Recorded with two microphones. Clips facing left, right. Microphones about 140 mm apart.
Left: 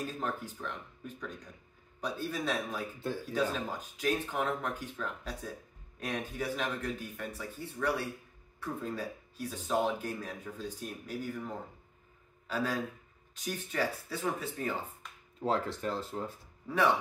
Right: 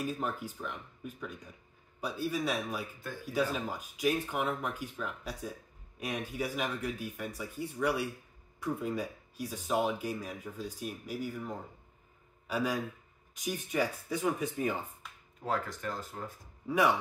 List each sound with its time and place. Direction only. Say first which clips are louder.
0.0 s speech: right 1 dB; 10° right (ahead or behind)
15.0 s a sound: even; 5° right (ahead or behind)
15.4 s speech: left 3 dB; 25° left (ahead or behind)
16.6 s speech: right 1 dB; 10° right (ahead or behind)